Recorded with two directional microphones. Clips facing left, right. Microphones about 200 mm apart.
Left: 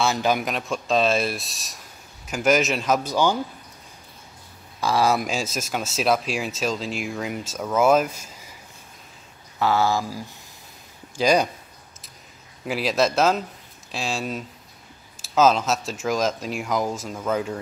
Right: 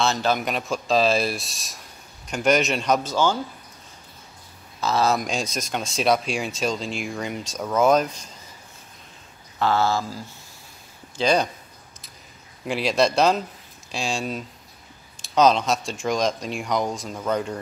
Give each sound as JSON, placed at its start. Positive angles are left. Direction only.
{"t": 0.0, "sound": "speech", "side_deg": 10}
{"t": 0.5, "sound": "speech", "side_deg": 0}
{"t": 3.0, "sound": "speech", "side_deg": 15}
{"t": 4.7, "sound": "speech", "side_deg": 10}
{"t": 9.6, "sound": "speech", "side_deg": 10}
{"t": 12.6, "sound": "speech", "side_deg": 0}